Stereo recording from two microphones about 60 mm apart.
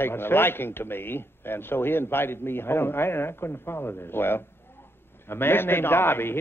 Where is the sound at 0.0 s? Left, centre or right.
Left.